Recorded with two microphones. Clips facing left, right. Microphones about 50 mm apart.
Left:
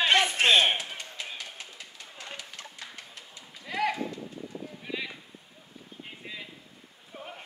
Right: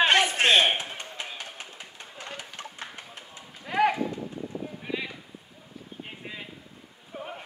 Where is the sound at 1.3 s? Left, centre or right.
Right.